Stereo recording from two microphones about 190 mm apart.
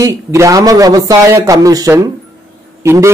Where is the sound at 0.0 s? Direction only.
15° right (ahead or behind).